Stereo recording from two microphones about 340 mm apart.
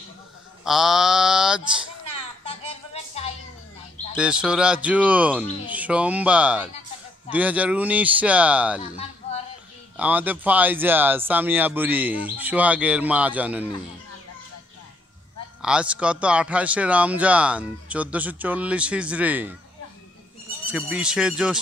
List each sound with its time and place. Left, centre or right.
0.7 s mantra: centre
2.4 s music: centre
4.2 s speech: centre
9.9 s speech: centre
15.6 s speech: centre
20.6 s speech: centre